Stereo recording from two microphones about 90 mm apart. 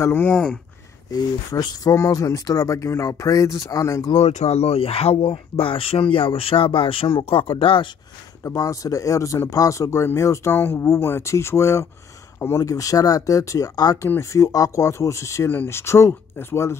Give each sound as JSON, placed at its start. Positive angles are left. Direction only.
{"t": 0.0, "sound": "speech", "side_deg": 20}
{"t": 0.3, "sound": "speech", "side_deg": 10}
{"t": 1.1, "sound": "speech", "side_deg": 50}
{"t": 4.7, "sound": "speech", "side_deg": 90}
{"t": 8.5, "sound": "speech", "side_deg": 35}
{"t": 14.0, "sound": "speech", "side_deg": 25}
{"t": 14.4, "sound": "speech", "side_deg": 40}